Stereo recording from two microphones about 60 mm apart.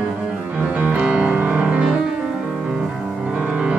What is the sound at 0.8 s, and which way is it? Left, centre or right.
Music, right.